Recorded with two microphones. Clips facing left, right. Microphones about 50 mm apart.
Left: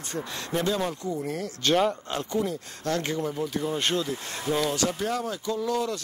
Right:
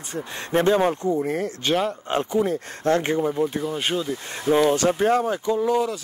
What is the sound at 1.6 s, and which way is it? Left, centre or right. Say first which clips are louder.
Speech: left 2 dB; centre.